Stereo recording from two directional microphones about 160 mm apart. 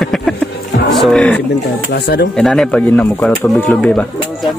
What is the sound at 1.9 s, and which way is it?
Speech, 90° left.